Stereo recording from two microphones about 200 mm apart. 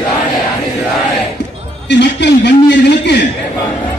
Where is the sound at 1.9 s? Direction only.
60° left (ahead or behind).